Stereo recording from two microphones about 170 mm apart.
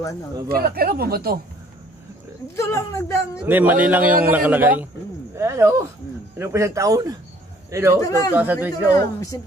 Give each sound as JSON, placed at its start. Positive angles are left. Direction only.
{"t": 0.5, "sound": "speech", "side_deg": -60}
{"t": 2.4, "sound": "speech", "side_deg": 15}
{"t": 3.3, "sound": "a man's voice", "side_deg": -10}
{"t": 8.0, "sound": "speech", "side_deg": 20}